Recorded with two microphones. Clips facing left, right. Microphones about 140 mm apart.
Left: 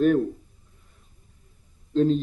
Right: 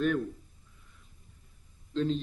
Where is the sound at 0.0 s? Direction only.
40° left (ahead or behind).